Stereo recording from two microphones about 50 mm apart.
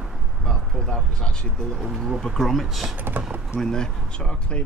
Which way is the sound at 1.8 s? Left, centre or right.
Centre.